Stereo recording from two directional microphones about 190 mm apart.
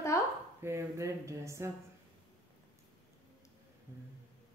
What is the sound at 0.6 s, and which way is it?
Speech, 15° right (ahead or behind).